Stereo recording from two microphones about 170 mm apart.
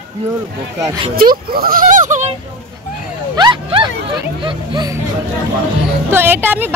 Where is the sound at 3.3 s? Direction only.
25° right (ahead or behind).